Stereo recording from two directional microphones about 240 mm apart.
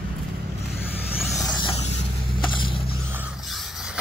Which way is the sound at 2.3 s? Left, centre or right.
Centre.